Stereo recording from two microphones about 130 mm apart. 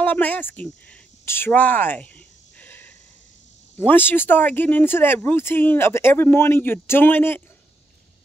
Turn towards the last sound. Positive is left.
turn(degrees=15)  # may be behind; listen again after turning